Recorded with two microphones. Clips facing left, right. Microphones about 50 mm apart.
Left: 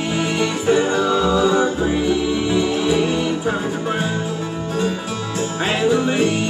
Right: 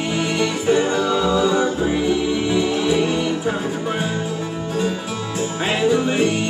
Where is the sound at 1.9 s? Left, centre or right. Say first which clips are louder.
Left 1 dB; centre.